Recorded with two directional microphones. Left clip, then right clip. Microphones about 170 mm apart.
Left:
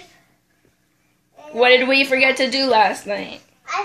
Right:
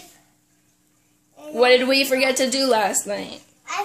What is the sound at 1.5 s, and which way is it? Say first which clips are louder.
Speech: left 2 dB; 15° right (ahead or behind).